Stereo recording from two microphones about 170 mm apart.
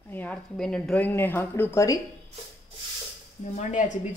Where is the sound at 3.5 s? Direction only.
45° left (ahead or behind).